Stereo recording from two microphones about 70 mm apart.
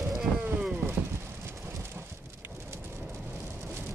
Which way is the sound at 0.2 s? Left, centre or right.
Centre.